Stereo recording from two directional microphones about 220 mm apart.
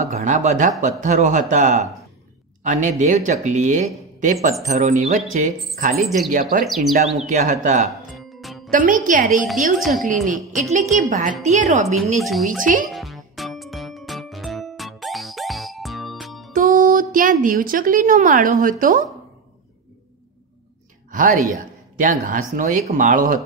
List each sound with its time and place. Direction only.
0.0 s speech: 30° right (ahead or behind)
6.6 s speech: centre (ahead or behind)
7.2 s speech: 35° right (ahead or behind)
8.2 s music: centre (ahead or behind)
8.6 s speech: 40° right (ahead or behind)
9.8 s speech: centre (ahead or behind)
10.0 s speech: 35° right (ahead or behind)
12.2 s speech: centre (ahead or behind)
12.4 s speech: 35° right (ahead or behind)
12.9 s music: centre (ahead or behind)
16.5 s a woman's voice: 40° right (ahead or behind)
21.1 s speech: 35° right (ahead or behind)